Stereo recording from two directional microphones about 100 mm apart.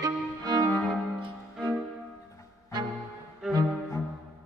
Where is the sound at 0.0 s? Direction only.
40° right (ahead or behind).